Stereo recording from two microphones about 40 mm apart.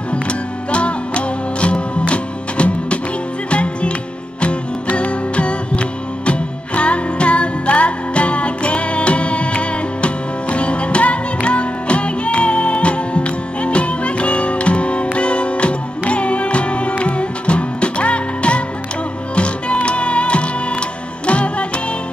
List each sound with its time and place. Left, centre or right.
0.7 s music: left